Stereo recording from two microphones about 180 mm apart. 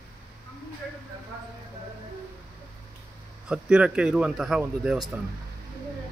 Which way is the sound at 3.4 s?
5° right (ahead or behind).